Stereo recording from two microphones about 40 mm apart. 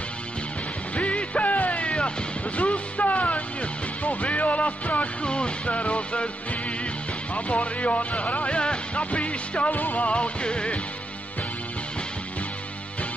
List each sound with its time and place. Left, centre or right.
0.9 s music: left
4.0 s speech: left
7.3 s speech: left
9.7 s speech: left